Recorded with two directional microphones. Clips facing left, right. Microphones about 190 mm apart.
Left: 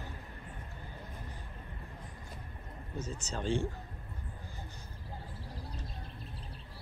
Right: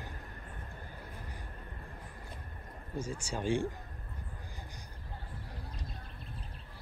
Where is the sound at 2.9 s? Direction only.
10° right (ahead or behind).